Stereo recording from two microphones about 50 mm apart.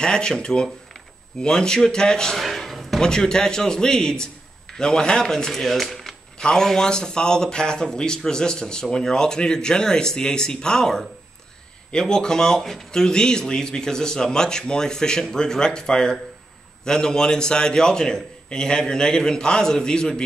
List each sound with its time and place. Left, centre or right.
0.0 s a man's voice: centre
2.4 s a sound: centre
3.0 s a man's voice: centre
6.3 s a man's voice: centre